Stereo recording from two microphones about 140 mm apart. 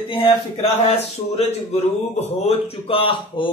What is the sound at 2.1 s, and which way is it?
Speech, 45° left (ahead or behind).